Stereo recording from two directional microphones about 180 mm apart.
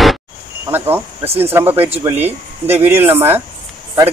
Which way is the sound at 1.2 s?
35° right (ahead or behind).